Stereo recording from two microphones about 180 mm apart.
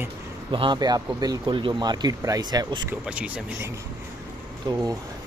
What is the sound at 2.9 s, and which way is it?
Speech, 5° right (ahead or behind).